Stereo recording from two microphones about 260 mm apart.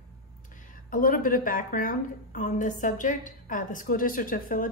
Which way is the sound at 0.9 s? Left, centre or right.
Left.